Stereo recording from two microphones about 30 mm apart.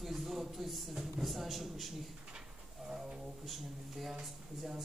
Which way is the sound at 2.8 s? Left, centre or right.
Right.